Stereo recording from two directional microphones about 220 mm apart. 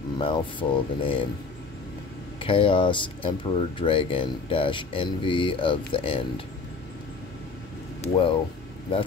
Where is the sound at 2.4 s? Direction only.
25° left (ahead or behind).